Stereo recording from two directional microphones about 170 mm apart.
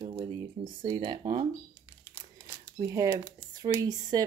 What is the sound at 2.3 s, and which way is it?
Speech, 15° right (ahead or behind).